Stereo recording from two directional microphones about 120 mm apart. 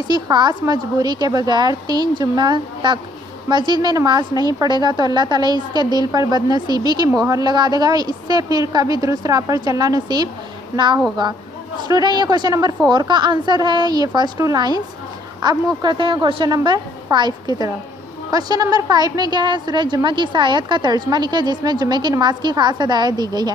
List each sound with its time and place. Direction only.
0.1 s a woman's voice: 35° right (ahead or behind)
11.9 s a woman's voice: 35° right (ahead or behind)
16.4 s a woman's voice: 35° right (ahead or behind)